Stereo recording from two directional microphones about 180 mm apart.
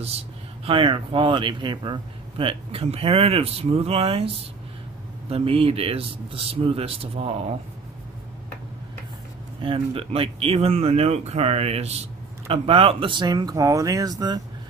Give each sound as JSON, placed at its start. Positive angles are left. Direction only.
{"t": 0.7, "sound": "a man's voice", "side_deg": -30}
{"t": 5.3, "sound": "a man's voice", "side_deg": -30}
{"t": 9.6, "sound": "a man's voice", "side_deg": -30}